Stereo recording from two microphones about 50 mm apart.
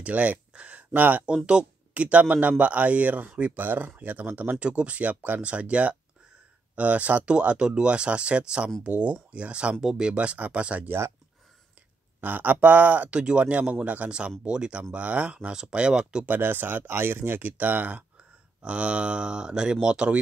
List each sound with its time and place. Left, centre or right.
0.0 s a sound: right
0.9 s speech: right
1.2 s speech: centre
10.1 s speech: right
12.2 s speech: right; by 16.3 s centre
16.3 s speech: right
18.6 s speech: right